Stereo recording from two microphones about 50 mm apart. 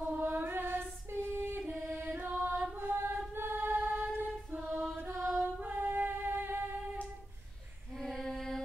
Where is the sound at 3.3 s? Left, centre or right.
Right.